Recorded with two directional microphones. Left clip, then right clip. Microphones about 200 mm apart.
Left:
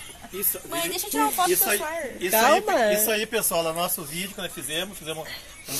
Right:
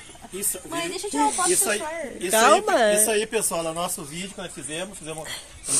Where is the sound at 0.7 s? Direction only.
45° left (ahead or behind).